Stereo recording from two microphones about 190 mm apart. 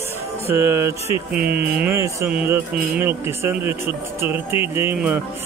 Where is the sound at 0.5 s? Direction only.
15° right (ahead or behind).